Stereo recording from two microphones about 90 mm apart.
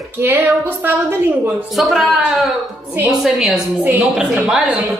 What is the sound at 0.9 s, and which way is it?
Speech, 20° right (ahead or behind).